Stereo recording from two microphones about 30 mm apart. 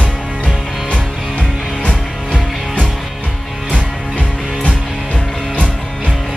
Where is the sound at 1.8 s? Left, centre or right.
Left.